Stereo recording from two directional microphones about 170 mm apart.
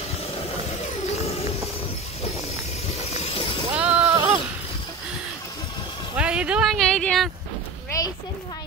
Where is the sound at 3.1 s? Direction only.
35° left (ahead or behind).